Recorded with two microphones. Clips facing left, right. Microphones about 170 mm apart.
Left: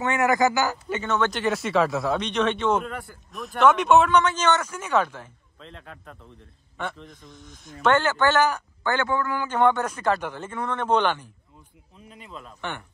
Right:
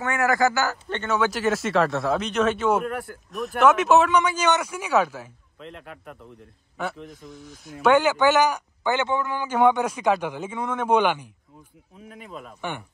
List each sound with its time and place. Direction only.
0.0 s speech: 20° left (ahead or behind)
1.0 s speech: 5° right (ahead or behind)
12.3 s speech: 10° right (ahead or behind)